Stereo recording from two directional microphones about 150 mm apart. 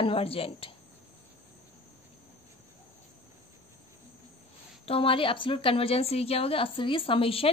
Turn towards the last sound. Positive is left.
turn(degrees=40)  # may be behind; listen again after turning